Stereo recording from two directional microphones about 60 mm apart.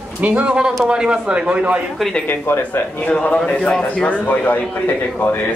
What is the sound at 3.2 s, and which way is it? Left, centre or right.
A man's voice, left.